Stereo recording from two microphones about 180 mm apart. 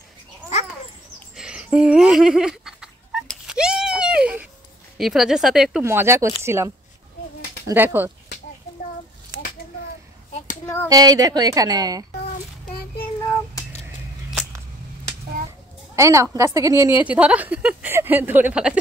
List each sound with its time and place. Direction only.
1.3 s fowl: 5° right (ahead or behind)
4.9 s speech: centre (ahead or behind)
5.9 s a woman's voice: 15° right (ahead or behind)
10.6 s a sound: 15° left (ahead or behind)
10.9 s speech: 20° right (ahead or behind)
12.6 s child singing: 55° left (ahead or behind)
16.0 s a woman's voice: 15° right (ahead or behind)